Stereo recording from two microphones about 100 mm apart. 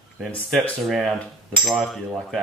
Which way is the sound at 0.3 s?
10° left (ahead or behind).